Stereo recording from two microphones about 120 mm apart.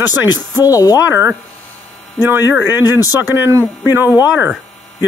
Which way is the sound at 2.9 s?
30° left (ahead or behind).